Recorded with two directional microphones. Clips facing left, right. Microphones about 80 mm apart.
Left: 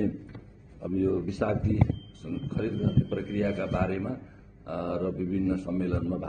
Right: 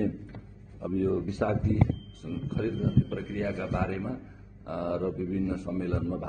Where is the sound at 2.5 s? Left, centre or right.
Centre.